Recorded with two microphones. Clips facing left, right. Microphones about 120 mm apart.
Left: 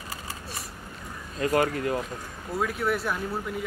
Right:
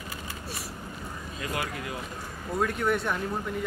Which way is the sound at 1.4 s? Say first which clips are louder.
Left 10 dB; 45° left (ahead or behind).